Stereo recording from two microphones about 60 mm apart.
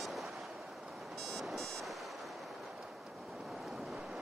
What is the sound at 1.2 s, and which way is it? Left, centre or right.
Music, centre.